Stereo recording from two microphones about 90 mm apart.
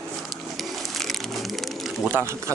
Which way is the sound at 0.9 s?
Centre (ahead or behind).